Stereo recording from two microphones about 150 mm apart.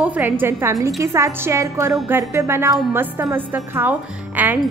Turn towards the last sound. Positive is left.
turn(degrees=-10)  # may be behind; listen again after turning